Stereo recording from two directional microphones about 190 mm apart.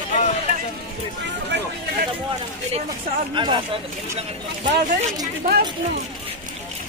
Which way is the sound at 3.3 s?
25° right (ahead or behind).